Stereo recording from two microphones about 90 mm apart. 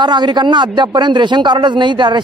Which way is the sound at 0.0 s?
55° right (ahead or behind).